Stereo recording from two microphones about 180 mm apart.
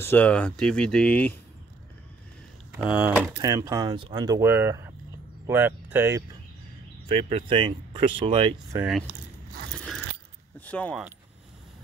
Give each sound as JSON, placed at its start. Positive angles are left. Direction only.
{"t": 0.0, "sound": "speech", "side_deg": 10}
{"t": 2.8, "sound": "speech", "side_deg": -5}
{"t": 3.3, "sound": "speech", "side_deg": -20}
{"t": 7.1, "sound": "speech", "side_deg": -30}
{"t": 8.7, "sound": "speech", "side_deg": -5}
{"t": 9.8, "sound": "biting", "side_deg": 5}
{"t": 10.6, "sound": "speech", "side_deg": 10}